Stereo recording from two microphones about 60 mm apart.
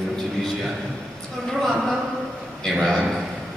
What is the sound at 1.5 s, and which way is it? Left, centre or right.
A man's voice, centre.